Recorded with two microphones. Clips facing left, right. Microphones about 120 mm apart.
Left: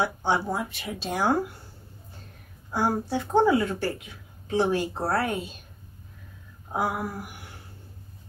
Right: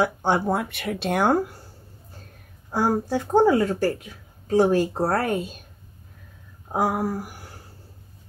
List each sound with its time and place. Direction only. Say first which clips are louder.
0.0 s speech: right 4 dB; 50° right (ahead or behind)
2.7 s speech: right 3 dB; 45° right (ahead or behind)
6.7 s speech: right 5 dB; 40° right (ahead or behind)